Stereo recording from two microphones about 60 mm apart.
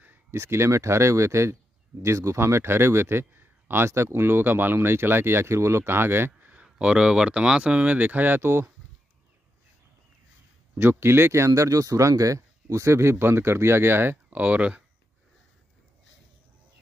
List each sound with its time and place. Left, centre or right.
0.3 s speech: right
6.5 s speech: centre
8.4 s speech: right
10.8 s speech: right
14.3 s speech: right